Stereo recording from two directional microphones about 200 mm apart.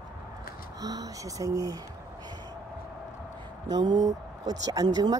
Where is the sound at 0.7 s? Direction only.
15° right (ahead or behind).